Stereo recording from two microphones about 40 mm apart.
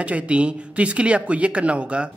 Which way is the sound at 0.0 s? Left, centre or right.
Right.